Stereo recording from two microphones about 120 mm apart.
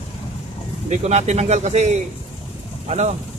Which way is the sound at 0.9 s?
65° right (ahead or behind).